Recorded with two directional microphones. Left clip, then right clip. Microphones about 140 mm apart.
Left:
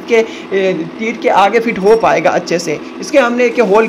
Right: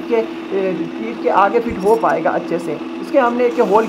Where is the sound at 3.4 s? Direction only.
20° left (ahead or behind).